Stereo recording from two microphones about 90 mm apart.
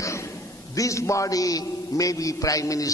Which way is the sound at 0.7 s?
35° left (ahead or behind).